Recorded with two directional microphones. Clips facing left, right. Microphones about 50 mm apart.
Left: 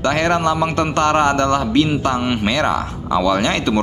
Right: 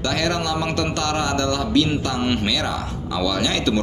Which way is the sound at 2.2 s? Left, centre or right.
Centre.